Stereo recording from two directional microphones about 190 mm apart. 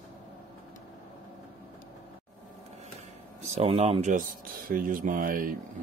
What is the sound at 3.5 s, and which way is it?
Speech, 30° right (ahead or behind).